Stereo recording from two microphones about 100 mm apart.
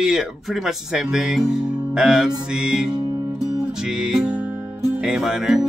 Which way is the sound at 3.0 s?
40° right (ahead or behind).